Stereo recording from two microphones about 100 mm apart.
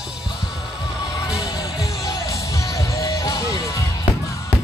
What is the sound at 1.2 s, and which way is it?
Music, 40° left (ahead or behind).